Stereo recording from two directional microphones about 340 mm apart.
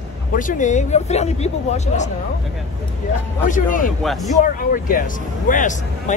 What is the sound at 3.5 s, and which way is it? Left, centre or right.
Speech, left.